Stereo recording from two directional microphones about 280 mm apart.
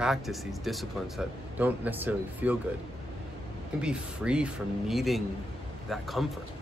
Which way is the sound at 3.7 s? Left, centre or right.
Centre.